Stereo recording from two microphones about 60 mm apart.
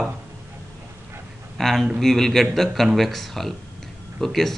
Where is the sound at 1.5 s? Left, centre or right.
Centre.